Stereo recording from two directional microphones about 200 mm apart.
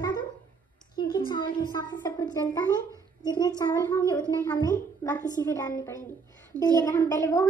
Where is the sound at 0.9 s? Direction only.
20° left (ahead or behind).